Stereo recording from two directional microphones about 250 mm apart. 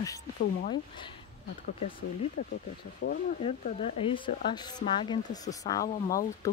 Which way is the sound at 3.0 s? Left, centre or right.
Left.